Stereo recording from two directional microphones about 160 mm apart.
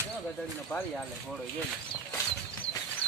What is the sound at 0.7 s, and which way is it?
Speech, 15° left (ahead or behind).